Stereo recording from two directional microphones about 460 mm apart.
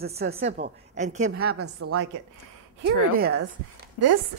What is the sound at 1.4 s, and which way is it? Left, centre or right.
A woman's voice, right.